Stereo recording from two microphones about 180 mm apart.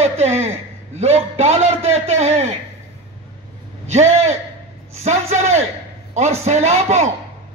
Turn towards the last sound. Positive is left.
turn(degrees=-40)  # may be behind; listen again after turning